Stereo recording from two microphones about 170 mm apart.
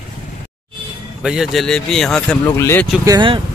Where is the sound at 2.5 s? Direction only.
15° left (ahead or behind).